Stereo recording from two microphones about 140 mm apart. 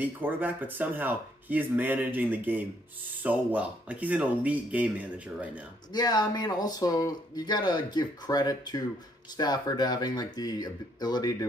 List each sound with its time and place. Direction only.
0.0 s speech: 15° right (ahead or behind)
5.9 s speech: 30° left (ahead or behind)